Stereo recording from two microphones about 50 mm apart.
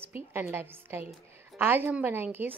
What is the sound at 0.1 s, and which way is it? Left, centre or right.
A woman's voice, right.